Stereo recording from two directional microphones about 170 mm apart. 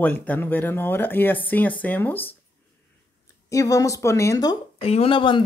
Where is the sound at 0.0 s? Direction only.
10° left (ahead or behind).